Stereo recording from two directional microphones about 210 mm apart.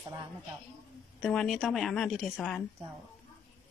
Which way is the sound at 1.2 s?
Centre (ahead or behind).